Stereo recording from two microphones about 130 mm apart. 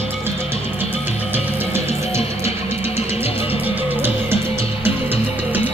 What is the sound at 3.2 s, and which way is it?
Music, 50° left (ahead or behind).